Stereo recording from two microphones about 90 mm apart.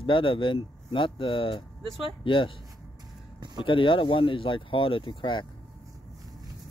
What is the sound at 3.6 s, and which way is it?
Speech, 70° left (ahead or behind).